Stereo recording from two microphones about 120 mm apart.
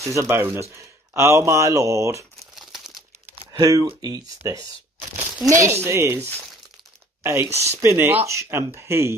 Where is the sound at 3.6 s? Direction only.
30° right (ahead or behind).